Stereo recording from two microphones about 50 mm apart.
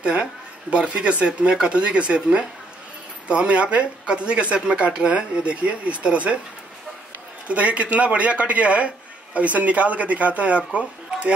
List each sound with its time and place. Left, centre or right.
0.0 s speech: right
7.4 s speech: right